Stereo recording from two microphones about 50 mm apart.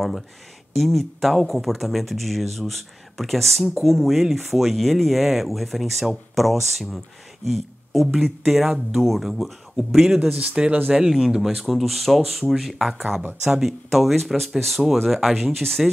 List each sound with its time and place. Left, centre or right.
0.7 s speech: centre
8.1 s speech: centre
10.3 s speech: right
10.9 s speech: centre
12.9 s speech: centre
15.3 s speech: centre